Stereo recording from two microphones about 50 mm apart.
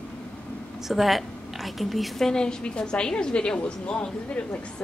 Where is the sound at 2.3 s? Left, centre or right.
Centre.